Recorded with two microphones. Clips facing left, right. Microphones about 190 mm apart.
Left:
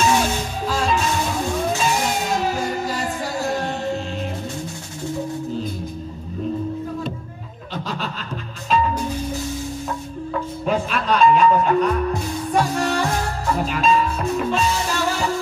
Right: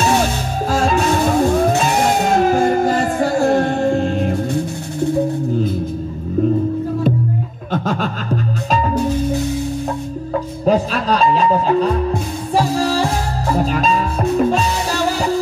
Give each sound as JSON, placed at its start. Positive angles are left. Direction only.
{"t": 0.7, "sound": "music", "side_deg": -45}
{"t": 7.7, "sound": "a sound", "side_deg": -50}
{"t": 8.6, "sound": "music", "side_deg": -40}
{"t": 10.6, "sound": "music", "side_deg": -35}